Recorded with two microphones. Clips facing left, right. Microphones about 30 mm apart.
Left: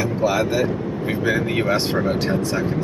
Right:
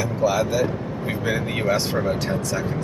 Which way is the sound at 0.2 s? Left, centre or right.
Left.